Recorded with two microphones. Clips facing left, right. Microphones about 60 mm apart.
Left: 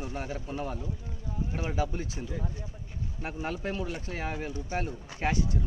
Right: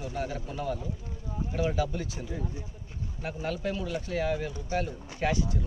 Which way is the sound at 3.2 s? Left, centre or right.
Left.